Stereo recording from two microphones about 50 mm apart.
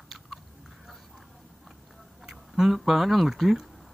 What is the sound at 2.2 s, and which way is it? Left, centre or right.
Speech, centre.